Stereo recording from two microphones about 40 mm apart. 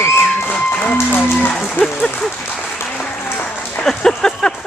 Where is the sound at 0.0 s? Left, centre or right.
Left.